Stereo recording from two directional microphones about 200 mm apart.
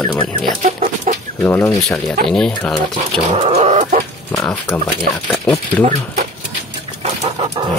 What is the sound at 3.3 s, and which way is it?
Chicken, 30° right (ahead or behind).